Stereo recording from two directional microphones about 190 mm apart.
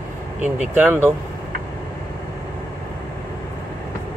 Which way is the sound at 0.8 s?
10° right (ahead or behind).